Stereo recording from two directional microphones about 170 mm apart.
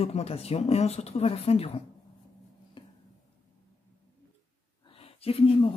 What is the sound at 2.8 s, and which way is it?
Tick-tock, 30° left (ahead or behind).